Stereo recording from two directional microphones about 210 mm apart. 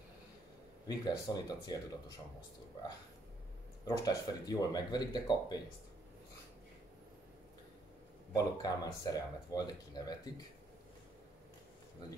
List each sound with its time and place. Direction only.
0.8 s speech: 20° left (ahead or behind)
3.8 s speech: 15° left (ahead or behind)
8.3 s speech: 20° left (ahead or behind)